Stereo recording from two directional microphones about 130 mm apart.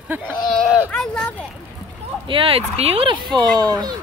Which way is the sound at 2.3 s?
45° right (ahead or behind).